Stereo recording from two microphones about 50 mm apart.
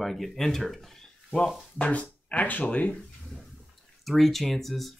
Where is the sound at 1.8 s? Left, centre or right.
Left.